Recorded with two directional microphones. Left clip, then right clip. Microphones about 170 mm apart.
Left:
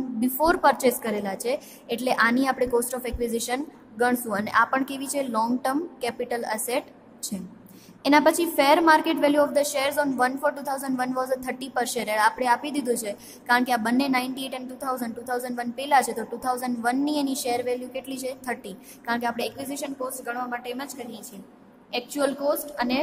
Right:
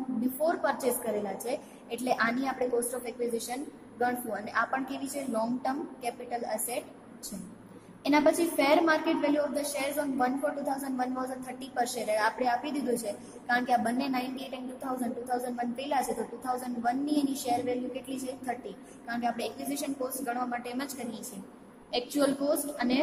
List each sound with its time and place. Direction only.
0.4 s a woman's voice: 45° left (ahead or behind)
8.0 s a woman's voice: 40° left (ahead or behind); by 22.9 s 20° left (ahead or behind)